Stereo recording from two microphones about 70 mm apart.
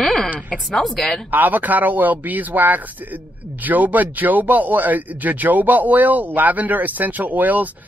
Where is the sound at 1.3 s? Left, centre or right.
Right.